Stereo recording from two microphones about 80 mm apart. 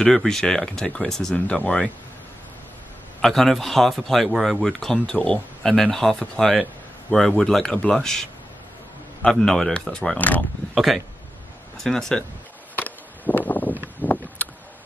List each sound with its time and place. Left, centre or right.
0.0 s a man's voice: centre
3.2 s a man's voice: centre
4.9 s a man's voice: centre
10.1 s speech: centre
10.7 s speech: centre
12.7 s a sound: left